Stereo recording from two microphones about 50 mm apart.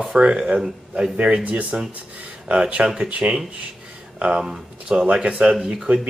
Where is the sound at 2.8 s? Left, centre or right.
Right.